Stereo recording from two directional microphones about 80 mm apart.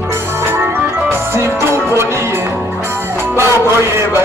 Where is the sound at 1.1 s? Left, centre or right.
Right.